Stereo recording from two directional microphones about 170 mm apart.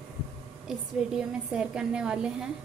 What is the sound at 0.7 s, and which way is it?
A woman's voice, 5° right (ahead or behind).